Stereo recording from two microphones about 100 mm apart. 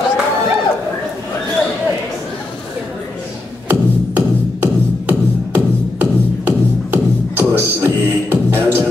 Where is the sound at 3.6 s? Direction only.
20° right (ahead or behind).